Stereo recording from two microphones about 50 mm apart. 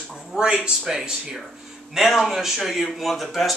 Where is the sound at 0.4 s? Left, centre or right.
Centre.